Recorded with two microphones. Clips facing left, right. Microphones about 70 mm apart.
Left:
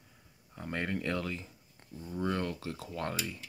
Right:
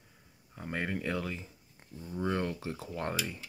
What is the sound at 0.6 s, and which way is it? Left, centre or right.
Speech, centre.